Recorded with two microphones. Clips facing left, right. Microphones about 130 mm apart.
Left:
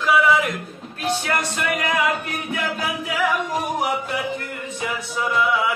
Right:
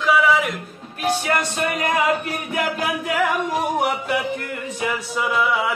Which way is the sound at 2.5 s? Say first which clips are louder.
Right 3 dB; 50° right (ahead or behind).